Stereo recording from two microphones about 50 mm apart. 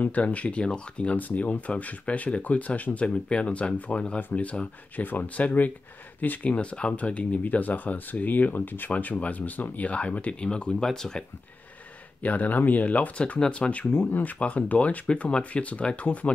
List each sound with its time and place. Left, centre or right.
0.0 s speech: left
6.5 s speech: left
12.2 s speech: left
13.9 s speech: left
14.4 s speech: left